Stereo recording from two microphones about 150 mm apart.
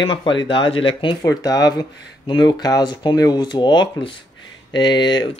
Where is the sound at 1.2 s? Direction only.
25° left (ahead or behind).